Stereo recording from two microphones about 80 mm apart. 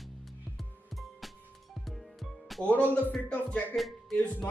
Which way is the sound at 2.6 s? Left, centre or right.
Centre.